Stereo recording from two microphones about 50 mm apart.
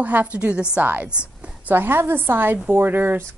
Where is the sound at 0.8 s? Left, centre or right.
Right.